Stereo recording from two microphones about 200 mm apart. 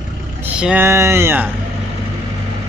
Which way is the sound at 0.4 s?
5° right (ahead or behind).